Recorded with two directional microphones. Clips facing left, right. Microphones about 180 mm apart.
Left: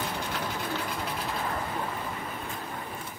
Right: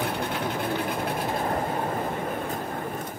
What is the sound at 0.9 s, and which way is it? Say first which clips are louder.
Train: right 6 dB; 50° right (ahead or behind).